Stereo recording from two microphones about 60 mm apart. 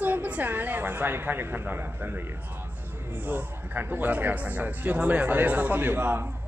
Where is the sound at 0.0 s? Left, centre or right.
Right.